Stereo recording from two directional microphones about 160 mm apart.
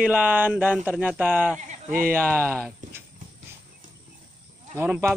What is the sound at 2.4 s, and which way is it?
Speech, 5° left (ahead or behind).